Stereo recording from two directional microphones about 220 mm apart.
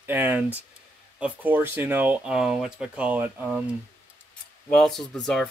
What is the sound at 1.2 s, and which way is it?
Speech, 10° right (ahead or behind).